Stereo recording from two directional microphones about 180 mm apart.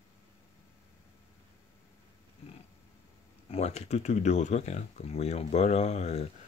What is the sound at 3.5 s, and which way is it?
Speech, 35° left (ahead or behind).